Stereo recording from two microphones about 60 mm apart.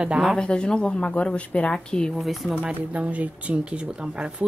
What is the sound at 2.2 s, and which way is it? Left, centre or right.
Speech, centre.